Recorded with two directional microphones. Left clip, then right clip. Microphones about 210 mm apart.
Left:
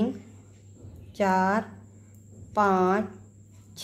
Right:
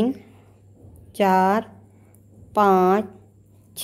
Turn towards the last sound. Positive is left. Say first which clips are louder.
# right 6 dB
turn(degrees=-50)  # may be behind; listen again after turning